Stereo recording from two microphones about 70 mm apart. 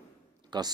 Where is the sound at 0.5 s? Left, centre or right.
Right.